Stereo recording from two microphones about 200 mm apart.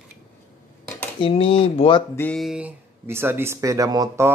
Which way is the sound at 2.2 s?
5° left (ahead or behind).